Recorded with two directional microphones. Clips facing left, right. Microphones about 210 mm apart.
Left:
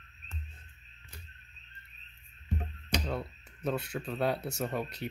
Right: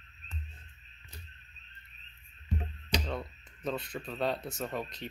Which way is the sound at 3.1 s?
5° left (ahead or behind).